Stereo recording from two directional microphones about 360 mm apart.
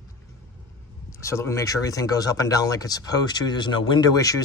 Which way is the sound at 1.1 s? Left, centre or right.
Centre.